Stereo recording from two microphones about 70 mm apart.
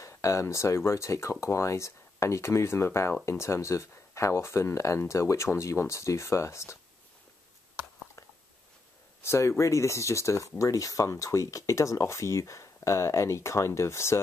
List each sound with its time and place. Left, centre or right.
0.0 s speech: left
9.2 s speech: left